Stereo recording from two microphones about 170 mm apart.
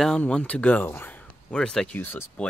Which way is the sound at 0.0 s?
5° left (ahead or behind).